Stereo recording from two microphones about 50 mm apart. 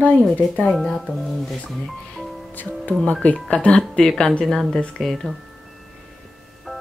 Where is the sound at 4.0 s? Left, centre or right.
Centre.